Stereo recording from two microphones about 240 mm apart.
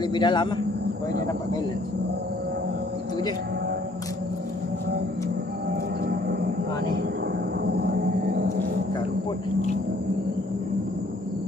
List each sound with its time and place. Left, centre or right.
0.0 s a man's voice: centre
7.6 s music: right